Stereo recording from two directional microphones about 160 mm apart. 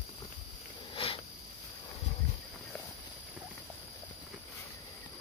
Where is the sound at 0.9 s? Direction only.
30° left (ahead or behind).